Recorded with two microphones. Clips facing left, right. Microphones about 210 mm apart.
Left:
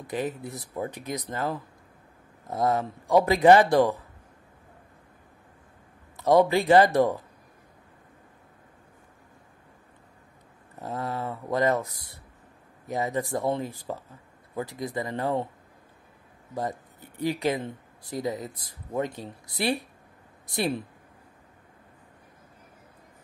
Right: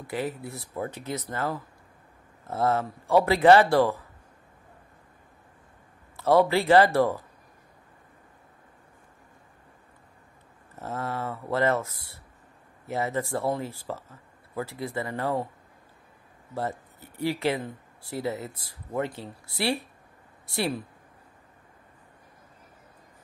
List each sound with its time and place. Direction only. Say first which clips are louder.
0.0 s speech: left 1 dB; 20° left (ahead or behind)
6.1 s speech: left 1 dB; 15° left (ahead or behind)
10.8 s speech: even; 15° left (ahead or behind)
17.4 s speech: even; 15° left (ahead or behind)